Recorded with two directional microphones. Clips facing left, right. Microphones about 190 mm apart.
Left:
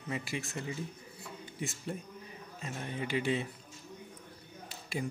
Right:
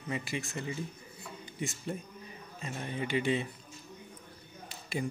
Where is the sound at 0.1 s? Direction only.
5° left (ahead or behind).